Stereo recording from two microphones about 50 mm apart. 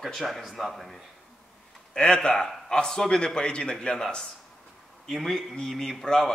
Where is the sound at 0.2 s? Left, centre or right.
Centre.